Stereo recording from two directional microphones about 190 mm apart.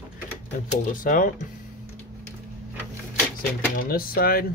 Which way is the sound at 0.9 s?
45° left (ahead or behind).